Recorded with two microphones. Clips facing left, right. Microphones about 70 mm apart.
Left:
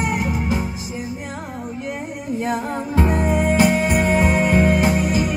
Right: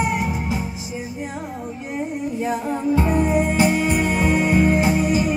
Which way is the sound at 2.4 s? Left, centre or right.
Left.